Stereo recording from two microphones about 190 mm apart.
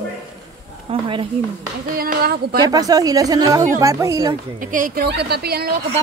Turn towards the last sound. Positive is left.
turn(degrees=-55)  # may be behind; listen again after turning